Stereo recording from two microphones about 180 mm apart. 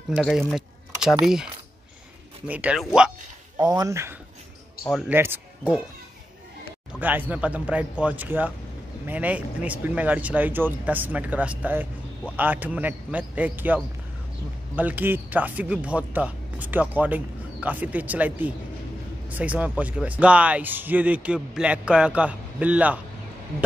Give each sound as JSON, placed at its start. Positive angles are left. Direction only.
{"t": 0.1, "sound": "speech", "side_deg": 0}
{"t": 3.5, "sound": "speech", "side_deg": -20}
{"t": 6.9, "sound": "speech", "side_deg": -10}
{"t": 14.8, "sound": "speech", "side_deg": -10}